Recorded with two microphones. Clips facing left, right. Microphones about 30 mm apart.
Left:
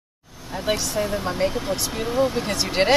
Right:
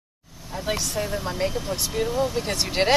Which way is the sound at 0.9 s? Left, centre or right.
Centre.